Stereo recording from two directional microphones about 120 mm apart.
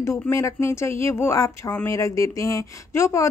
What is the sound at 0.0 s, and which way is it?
Speech, 25° left (ahead or behind).